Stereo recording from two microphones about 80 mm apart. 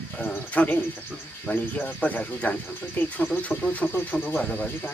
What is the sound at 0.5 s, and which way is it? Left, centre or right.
Speech, centre.